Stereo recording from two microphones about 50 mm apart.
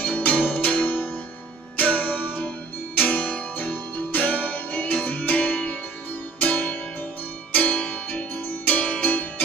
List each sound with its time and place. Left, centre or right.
0.0 s music: left
7.9 s music: left